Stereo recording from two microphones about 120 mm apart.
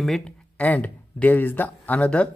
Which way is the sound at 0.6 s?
15° left (ahead or behind).